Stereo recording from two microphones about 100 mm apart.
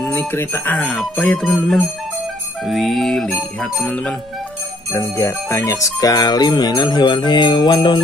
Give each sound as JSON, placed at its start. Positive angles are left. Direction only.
{"t": 0.1, "sound": "speech", "side_deg": 20}
{"t": 1.4, "sound": "music", "side_deg": 5}
{"t": 4.9, "sound": "music", "side_deg": 30}